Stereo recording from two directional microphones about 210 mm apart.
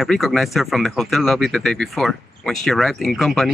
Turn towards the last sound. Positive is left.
turn(degrees=0)  # may be behind; listen again after turning